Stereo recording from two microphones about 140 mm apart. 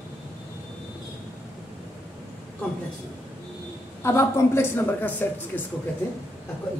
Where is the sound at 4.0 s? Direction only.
20° left (ahead or behind).